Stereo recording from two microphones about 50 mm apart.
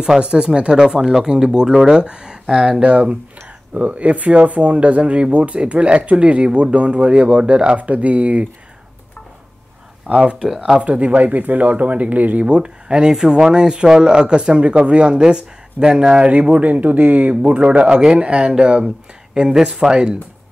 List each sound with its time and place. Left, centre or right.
0.0 s speech: centre
10.0 s speech: right
19.5 s speech: centre